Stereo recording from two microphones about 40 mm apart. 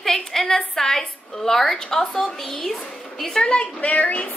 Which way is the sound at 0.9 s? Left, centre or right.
Left.